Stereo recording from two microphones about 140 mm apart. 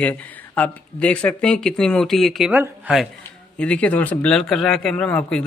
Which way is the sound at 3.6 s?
10° left (ahead or behind).